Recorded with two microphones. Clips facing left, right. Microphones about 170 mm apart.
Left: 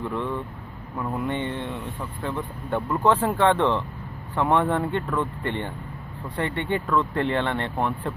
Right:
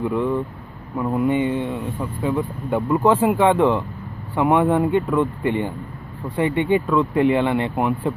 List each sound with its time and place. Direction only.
0.0 s speech: centre (ahead or behind)
2.7 s speech: centre (ahead or behind)